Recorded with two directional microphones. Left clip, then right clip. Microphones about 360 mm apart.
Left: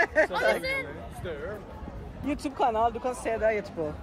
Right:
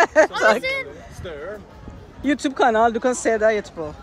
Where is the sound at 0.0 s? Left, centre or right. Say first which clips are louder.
Right 8 dB; centre.